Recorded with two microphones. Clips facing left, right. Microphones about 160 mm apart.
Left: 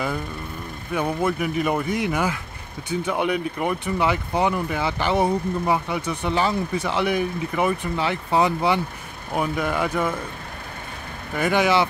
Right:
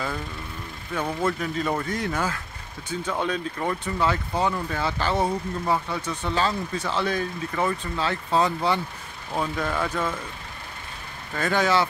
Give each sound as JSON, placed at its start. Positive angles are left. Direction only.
{"t": 0.9, "sound": "speech", "side_deg": 15}
{"t": 11.3, "sound": "speech", "side_deg": 15}